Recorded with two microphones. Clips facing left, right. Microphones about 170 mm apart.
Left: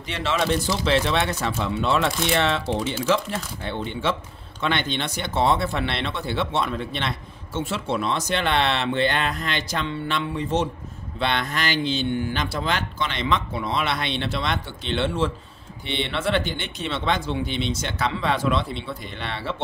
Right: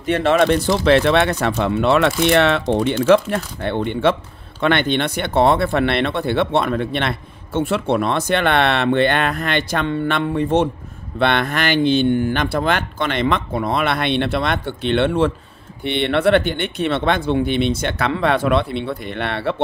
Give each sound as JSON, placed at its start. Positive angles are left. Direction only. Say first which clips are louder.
{"t": 0.0, "sound": "speech", "louder": "right 10 dB", "side_deg": -55}